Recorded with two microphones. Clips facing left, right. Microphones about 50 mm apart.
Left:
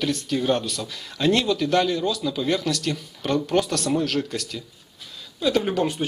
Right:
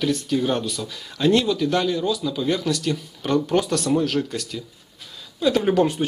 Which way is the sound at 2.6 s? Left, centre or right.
Right.